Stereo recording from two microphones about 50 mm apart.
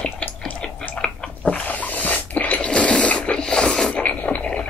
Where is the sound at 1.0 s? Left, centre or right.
Centre.